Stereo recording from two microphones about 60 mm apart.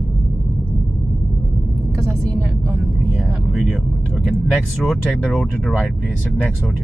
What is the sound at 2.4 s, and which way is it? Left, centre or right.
Vehicle, centre.